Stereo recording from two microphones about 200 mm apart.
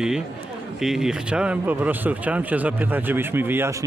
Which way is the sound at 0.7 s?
Centre (ahead or behind).